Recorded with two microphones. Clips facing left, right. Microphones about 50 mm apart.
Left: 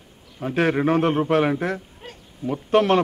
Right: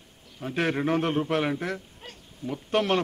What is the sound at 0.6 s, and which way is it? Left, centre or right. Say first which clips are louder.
Speech: left 6 dB; centre.